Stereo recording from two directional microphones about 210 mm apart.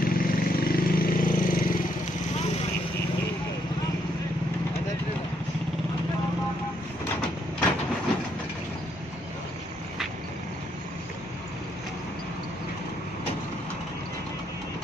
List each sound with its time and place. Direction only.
0.0 s vehicle: 45° left (ahead or behind)